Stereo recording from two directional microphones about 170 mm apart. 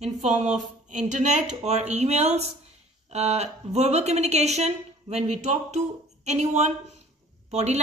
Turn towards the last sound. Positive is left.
turn(degrees=-40)  # may be behind; listen again after turning